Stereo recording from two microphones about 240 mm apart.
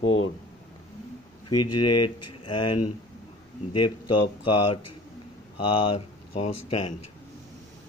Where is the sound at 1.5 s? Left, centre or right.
Left.